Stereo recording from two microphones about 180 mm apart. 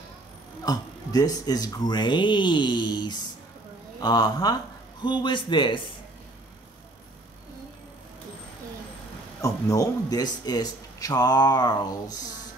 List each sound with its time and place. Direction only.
0.7 s speech: 20° left (ahead or behind)
9.4 s speech: 20° left (ahead or behind)